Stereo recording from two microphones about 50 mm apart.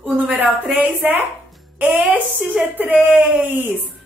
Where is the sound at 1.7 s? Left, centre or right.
Right.